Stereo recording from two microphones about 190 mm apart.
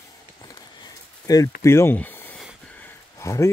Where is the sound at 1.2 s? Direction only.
20° left (ahead or behind).